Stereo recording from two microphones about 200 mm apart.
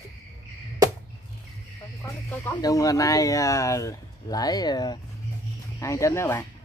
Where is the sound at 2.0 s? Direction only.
10° left (ahead or behind).